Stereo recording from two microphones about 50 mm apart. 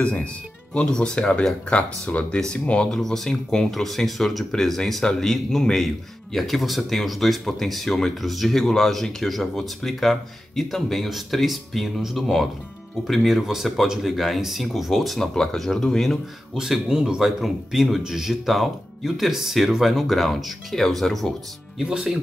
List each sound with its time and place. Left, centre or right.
0.0 s speech: left
3.0 s a man's voice: centre
13.4 s a man's voice: centre
16.5 s a man's voice: centre
21.8 s speech: centre